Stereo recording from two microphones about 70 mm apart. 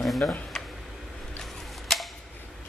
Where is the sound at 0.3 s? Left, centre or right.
Centre.